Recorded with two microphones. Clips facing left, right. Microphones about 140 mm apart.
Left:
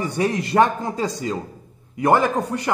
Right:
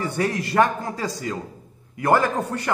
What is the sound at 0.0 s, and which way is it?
A man's voice, 20° left (ahead or behind).